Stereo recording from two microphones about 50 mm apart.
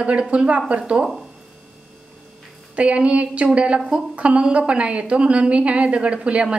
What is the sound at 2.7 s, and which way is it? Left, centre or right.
A woman's voice, right.